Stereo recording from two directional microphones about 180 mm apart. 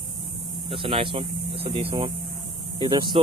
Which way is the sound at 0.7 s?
30° right (ahead or behind).